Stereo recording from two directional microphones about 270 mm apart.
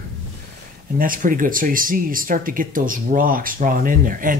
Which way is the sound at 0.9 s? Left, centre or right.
Right.